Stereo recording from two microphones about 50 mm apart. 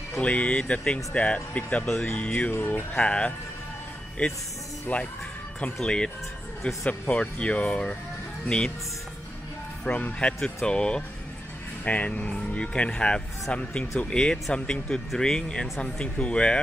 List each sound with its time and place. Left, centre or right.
0.2 s speech: left
2.5 s music: left
3.0 s speech: left
4.9 s speech: left
5.8 s speech: centre
10.1 s speech: centre